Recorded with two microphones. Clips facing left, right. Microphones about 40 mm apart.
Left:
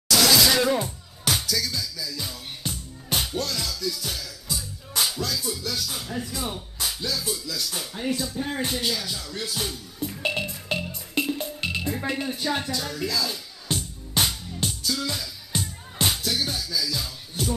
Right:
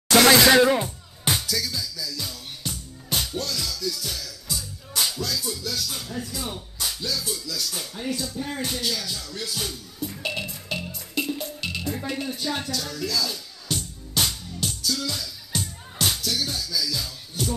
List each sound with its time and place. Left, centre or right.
0.1 s music: right
0.6 s speech: right
1.2 s music: centre
1.6 s music: centre
2.0 s music: centre
5.7 s speech: centre
10.7 s music: left